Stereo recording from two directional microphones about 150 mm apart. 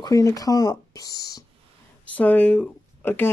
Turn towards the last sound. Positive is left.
turn(degrees=15)  # may be behind; listen again after turning